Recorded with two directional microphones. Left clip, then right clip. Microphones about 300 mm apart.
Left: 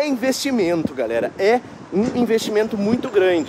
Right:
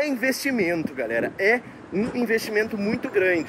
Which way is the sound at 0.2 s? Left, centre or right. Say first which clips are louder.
Left 3 dB; centre.